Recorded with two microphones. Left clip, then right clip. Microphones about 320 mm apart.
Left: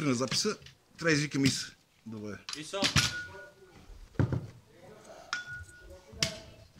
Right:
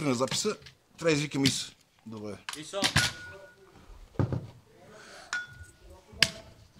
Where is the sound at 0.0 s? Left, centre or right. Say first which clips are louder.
Right 2 dB; centre.